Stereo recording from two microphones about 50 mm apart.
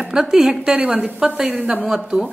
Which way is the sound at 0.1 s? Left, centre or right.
Centre.